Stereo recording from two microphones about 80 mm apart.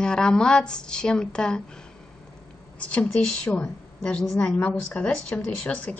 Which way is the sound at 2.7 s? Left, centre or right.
Centre.